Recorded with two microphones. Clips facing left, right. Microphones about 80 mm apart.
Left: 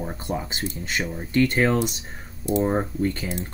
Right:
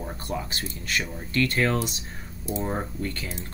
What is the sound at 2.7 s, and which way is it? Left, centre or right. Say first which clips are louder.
Speech: left 6 dB; left.